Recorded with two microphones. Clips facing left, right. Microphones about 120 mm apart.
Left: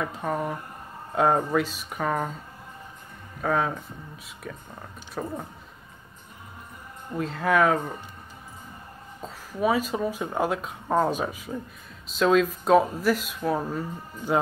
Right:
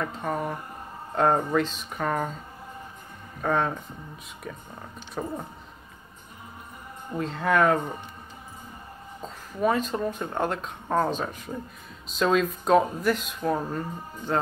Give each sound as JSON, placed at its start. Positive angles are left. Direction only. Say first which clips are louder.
{"t": 0.0, "sound": "speech", "louder": "left 1 dB", "side_deg": 5}
{"t": 3.4, "sound": "speech", "louder": "even", "side_deg": 5}
{"t": 7.2, "sound": "speech", "louder": "left 1 dB", "side_deg": 0}
{"t": 9.2, "sound": "speech", "louder": "even", "side_deg": 5}